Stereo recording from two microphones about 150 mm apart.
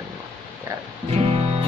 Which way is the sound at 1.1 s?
40° right (ahead or behind).